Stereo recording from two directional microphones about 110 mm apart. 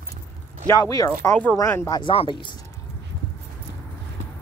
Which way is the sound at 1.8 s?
40° left (ahead or behind).